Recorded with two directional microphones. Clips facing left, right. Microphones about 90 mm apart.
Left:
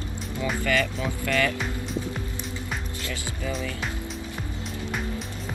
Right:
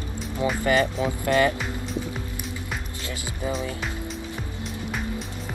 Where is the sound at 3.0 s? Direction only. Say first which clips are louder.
Right 1 dB; 20° right (ahead or behind).